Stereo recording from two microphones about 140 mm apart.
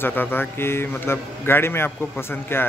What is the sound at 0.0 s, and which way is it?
A man's voice, 15° left (ahead or behind).